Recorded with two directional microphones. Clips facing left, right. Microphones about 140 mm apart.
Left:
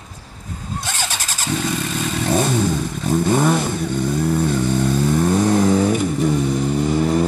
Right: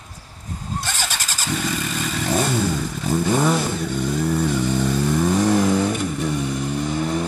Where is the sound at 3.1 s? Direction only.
5° left (ahead or behind).